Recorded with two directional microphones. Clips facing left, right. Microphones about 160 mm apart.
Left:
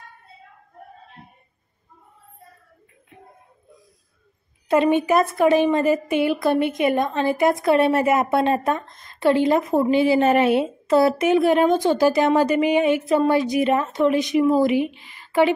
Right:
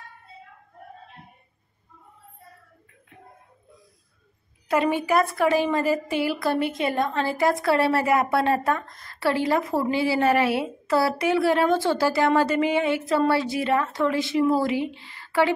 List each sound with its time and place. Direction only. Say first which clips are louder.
4.6 s a woman's voice: left 5 dB; 20° left (ahead or behind)